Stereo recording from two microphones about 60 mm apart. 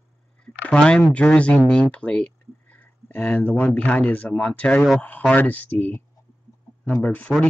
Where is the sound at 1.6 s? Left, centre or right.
Centre.